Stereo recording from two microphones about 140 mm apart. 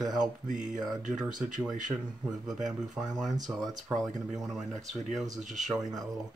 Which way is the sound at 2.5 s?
5° right (ahead or behind).